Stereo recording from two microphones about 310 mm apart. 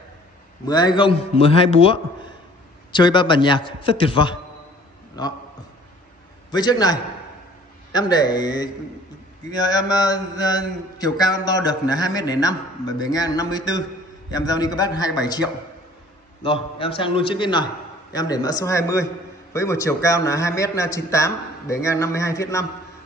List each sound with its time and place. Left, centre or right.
0.7 s a man's voice: centre
6.5 s a man's voice: centre
16.4 s a man's voice: centre